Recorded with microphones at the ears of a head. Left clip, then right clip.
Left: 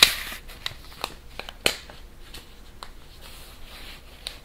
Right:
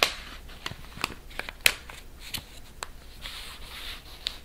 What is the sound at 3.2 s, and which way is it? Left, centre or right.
Rub, right.